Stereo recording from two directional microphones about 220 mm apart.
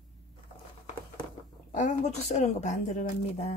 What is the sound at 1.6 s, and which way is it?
Speech, 35° left (ahead or behind).